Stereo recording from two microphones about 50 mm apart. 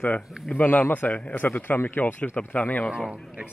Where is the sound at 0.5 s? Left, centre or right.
Left.